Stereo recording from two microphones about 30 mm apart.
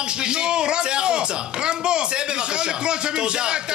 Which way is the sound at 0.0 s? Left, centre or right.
Right.